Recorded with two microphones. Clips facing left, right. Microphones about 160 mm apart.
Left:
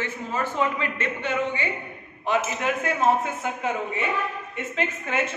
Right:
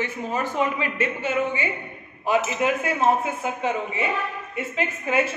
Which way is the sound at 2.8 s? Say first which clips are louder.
Right 1 dB; 5° right (ahead or behind).